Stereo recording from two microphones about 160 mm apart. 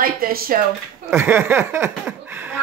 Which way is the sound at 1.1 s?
15° right (ahead or behind).